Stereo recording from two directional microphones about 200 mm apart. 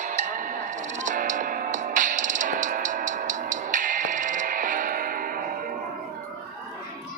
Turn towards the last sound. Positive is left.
turn(degrees=-45)  # may be behind; listen again after turning